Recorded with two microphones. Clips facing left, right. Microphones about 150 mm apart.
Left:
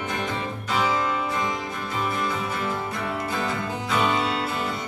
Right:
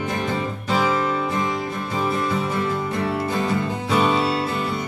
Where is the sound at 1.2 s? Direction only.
30° right (ahead or behind).